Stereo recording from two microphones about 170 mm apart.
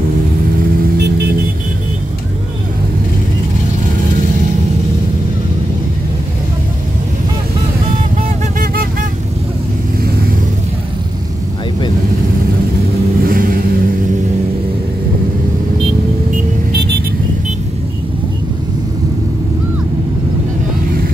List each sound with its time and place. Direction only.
13.2 s vehicle: 55° right (ahead or behind)